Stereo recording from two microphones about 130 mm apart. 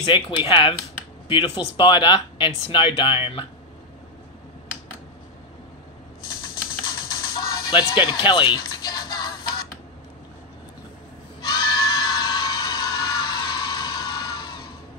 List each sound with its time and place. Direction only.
0.1 s speech: 40° left (ahead or behind)
7.3 s music: 35° left (ahead or behind)
11.4 s music: 35° left (ahead or behind)